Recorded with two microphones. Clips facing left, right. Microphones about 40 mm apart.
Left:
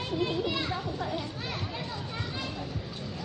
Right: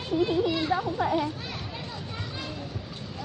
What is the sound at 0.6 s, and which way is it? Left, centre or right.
Speech, right.